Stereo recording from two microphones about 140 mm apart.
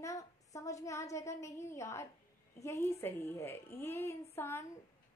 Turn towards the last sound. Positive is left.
turn(degrees=15)  # may be behind; listen again after turning